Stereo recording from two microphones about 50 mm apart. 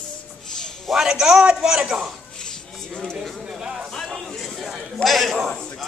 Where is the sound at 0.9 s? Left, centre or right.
Centre.